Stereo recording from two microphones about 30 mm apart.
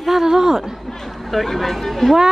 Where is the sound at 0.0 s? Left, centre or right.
Centre.